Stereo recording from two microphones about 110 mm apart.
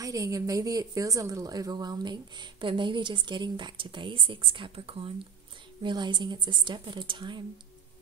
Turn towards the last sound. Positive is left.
turn(degrees=-45)  # may be behind; listen again after turning